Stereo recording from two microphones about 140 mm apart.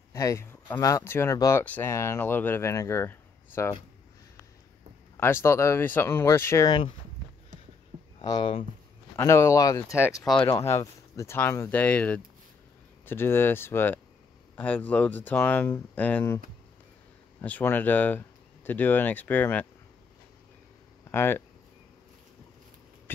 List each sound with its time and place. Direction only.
0.1 s speech: 25° left (ahead or behind)
5.1 s speech: 15° left (ahead or behind)
8.2 s speech: 35° left (ahead or behind)
9.1 s speech: 20° left (ahead or behind)
17.4 s speech: 10° left (ahead or behind)
21.1 s speech: 15° left (ahead or behind)